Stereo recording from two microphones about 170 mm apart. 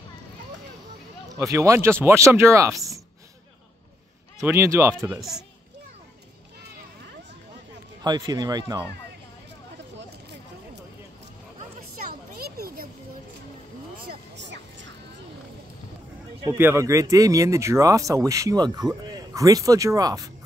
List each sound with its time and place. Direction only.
1.3 s speech: 20° right (ahead or behind)
4.4 s speech: 15° right (ahead or behind)
8.0 s speech: 25° right (ahead or behind)
12.4 s a sound: 65° right (ahead or behind)
14.0 s a sound: 90° right
16.4 s speech: 15° right (ahead or behind)